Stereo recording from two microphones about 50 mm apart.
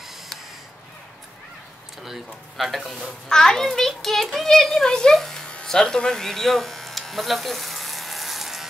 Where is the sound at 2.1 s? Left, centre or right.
Centre.